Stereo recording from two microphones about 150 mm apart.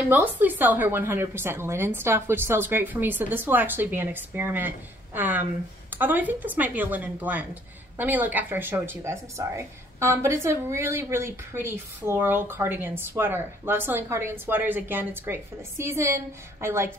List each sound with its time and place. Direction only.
0.1 s a woman's voice: 10° right (ahead or behind)